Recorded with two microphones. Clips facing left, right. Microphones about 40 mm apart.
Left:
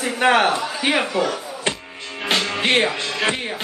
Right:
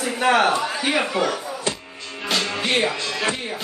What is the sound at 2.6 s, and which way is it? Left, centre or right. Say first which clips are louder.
Speech: left 3 dB; left.